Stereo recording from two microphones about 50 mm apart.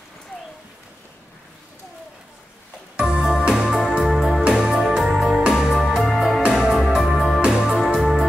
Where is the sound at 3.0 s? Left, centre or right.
Centre.